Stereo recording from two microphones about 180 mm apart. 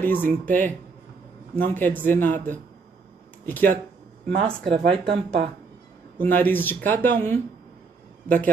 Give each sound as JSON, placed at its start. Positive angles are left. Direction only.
{"t": 0.0, "sound": "speech", "side_deg": 10}
{"t": 3.4, "sound": "speech", "side_deg": 10}
{"t": 4.4, "sound": "speech", "side_deg": -30}
{"t": 6.1, "sound": "speech", "side_deg": 10}